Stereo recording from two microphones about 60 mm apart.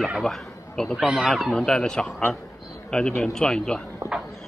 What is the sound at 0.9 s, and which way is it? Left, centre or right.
Speech, centre.